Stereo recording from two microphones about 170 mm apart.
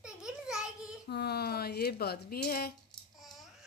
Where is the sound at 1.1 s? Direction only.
70° left (ahead or behind).